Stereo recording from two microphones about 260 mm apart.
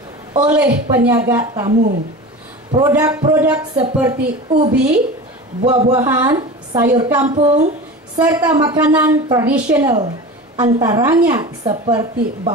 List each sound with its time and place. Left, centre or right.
0.5 s a woman's voice: centre
7.2 s a woman's voice: right
8.2 s a woman's voice: centre